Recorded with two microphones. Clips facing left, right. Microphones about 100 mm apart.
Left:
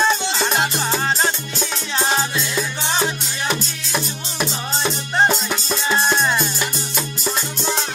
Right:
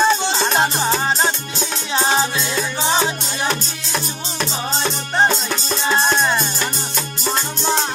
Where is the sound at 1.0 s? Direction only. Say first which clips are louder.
Right 1 dB; 10° right (ahead or behind).